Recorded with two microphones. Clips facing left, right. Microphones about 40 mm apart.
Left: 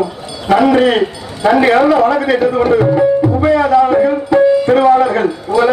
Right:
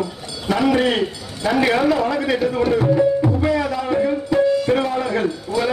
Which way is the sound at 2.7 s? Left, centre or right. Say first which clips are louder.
Left 4 dB; left.